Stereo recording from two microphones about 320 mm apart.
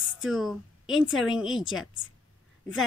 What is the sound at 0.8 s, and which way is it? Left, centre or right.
Speech, left.